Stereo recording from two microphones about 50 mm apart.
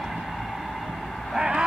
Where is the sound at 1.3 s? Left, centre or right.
Centre.